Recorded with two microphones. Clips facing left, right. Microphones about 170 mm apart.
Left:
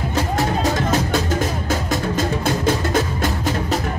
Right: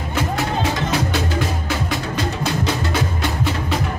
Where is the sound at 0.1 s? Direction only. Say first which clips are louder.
Even; 40° left (ahead or behind).